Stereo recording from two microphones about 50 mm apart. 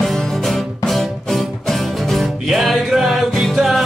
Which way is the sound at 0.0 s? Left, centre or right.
Centre.